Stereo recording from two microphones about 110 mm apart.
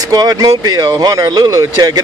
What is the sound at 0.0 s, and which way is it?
Speech, 35° right (ahead or behind).